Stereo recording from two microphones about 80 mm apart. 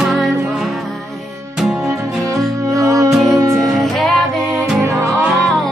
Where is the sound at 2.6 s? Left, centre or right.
Right.